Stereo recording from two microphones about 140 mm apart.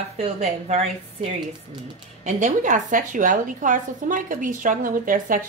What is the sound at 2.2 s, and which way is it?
A woman's voice, 65° right (ahead or behind).